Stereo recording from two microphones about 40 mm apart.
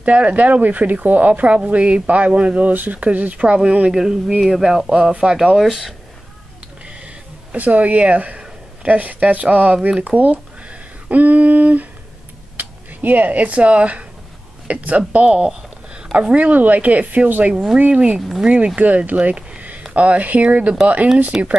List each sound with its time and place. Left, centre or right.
0.0 s speech: right
2.7 s speech: right
3.9 s speech: centre
5.1 s speech: right
5.6 s speech: centre
7.5 s speech: right
15.2 s speech: right
18.4 s speech: centre
18.8 s speech: right
21.3 s speech: centre